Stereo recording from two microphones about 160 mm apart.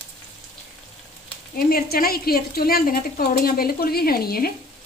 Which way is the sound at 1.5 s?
65° left (ahead or behind).